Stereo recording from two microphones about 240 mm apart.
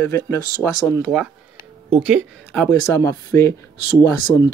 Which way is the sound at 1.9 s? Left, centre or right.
Centre.